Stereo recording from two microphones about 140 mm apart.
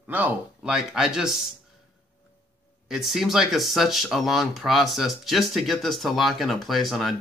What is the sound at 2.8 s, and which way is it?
Speech, centre (ahead or behind).